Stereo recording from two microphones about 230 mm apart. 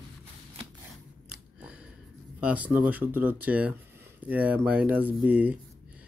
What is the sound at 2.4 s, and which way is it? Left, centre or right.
Speech, centre.